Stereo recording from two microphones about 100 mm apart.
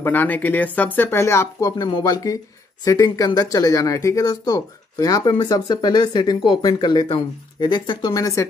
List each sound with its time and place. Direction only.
0.0 s speech: 20° left (ahead or behind)
1.8 s speech: 45° left (ahead or behind)